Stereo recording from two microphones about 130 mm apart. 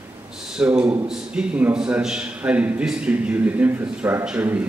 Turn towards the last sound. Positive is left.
turn(degrees=-10)  # may be behind; listen again after turning